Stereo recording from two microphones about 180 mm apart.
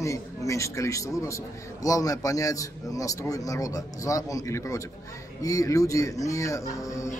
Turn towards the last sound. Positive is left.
turn(degrees=15)  # may be behind; listen again after turning